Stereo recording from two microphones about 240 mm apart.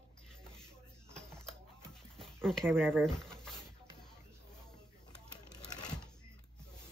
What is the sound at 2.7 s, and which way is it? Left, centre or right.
Speech, centre.